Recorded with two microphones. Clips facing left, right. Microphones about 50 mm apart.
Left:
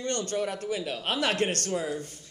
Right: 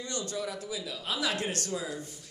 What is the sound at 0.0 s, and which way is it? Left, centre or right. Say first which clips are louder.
A man's voice: left 5 dB; left.